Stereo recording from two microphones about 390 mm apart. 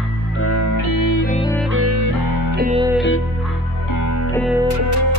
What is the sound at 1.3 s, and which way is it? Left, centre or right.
Music, centre.